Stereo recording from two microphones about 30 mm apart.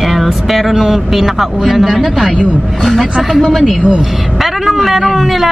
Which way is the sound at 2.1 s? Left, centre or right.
Right.